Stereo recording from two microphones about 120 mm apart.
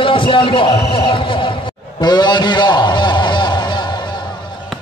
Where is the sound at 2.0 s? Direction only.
35° left (ahead or behind).